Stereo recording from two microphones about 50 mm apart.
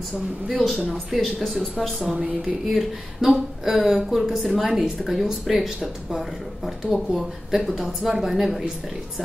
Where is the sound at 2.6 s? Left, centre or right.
Centre.